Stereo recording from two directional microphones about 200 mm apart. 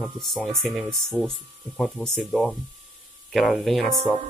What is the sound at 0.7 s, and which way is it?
Speech, 5° left (ahead or behind).